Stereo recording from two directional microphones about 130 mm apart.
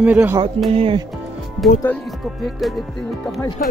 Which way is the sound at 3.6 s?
90° left.